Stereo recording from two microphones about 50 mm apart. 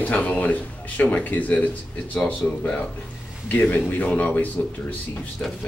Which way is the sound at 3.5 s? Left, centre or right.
Left.